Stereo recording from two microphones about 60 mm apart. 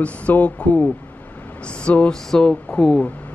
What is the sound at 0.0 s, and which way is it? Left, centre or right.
Speech, left.